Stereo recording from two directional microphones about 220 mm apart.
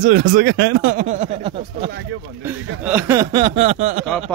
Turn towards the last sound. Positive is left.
turn(degrees=-30)  # may be behind; listen again after turning